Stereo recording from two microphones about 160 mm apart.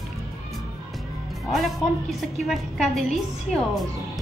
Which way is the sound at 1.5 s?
Centre (ahead or behind).